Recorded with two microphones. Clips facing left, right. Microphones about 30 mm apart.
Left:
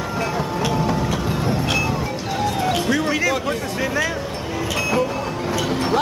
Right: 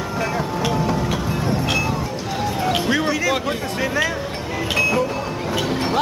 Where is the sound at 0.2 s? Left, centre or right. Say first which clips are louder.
Right 1 dB; centre.